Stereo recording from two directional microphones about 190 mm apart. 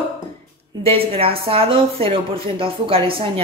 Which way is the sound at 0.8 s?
30° right (ahead or behind).